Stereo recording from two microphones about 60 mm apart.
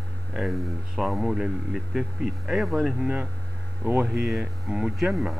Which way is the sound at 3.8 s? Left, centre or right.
Right.